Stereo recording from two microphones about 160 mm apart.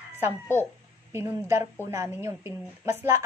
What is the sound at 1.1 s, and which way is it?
Speech, 15° right (ahead or behind).